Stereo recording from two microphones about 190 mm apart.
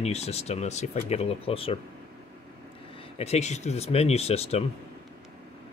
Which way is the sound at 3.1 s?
35° left (ahead or behind).